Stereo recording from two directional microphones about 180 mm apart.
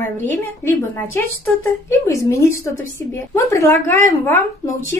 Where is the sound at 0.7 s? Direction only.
15° left (ahead or behind).